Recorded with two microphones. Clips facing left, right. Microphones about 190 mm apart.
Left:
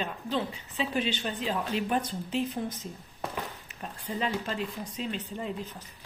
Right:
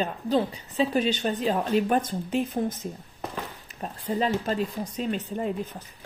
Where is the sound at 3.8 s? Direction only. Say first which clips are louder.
Right 6 dB; 40° right (ahead or behind).